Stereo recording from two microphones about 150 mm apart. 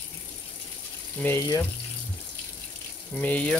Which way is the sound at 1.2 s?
20° left (ahead or behind).